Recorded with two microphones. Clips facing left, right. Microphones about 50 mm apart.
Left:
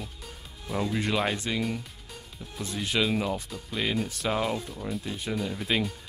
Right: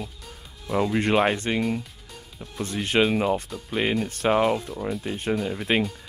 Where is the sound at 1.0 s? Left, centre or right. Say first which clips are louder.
Right 7 dB; right.